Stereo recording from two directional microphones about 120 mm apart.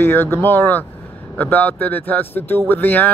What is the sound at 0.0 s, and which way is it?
Speech, 20° left (ahead or behind).